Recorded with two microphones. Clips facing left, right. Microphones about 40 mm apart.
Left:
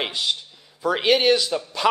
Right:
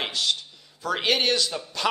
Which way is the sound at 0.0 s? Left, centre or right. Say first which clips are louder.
Left 1 dB; centre.